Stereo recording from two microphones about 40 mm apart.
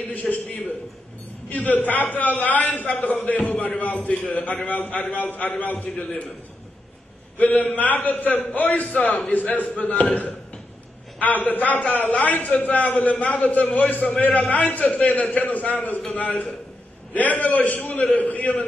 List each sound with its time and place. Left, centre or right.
0.3 s a man's voice: left
7.3 s a man's voice: left